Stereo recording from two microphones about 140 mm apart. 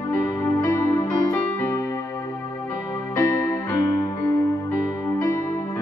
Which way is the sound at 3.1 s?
20° left (ahead or behind).